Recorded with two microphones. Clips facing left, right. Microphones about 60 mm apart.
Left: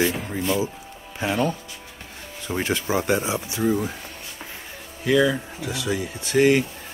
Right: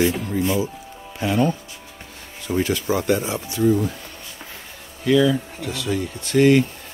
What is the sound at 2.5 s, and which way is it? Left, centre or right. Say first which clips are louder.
Speech: right 3 dB; left.